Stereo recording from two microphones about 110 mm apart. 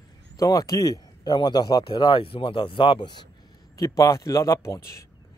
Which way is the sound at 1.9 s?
50° left (ahead or behind).